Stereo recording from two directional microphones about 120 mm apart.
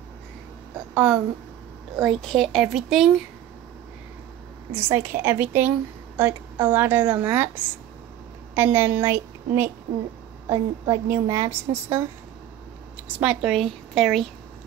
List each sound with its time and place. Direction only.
0.9 s a woman's voice: 35° right (ahead or behind)
2.0 s speech: centre (ahead or behind)
4.7 s a woman's voice: 20° right (ahead or behind)
12.9 s a woman's voice: 10° right (ahead or behind)